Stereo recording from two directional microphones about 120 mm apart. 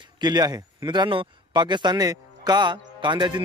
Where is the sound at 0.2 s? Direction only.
35° right (ahead or behind).